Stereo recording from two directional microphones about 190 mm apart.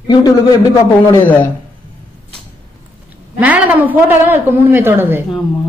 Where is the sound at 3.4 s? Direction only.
10° right (ahead or behind).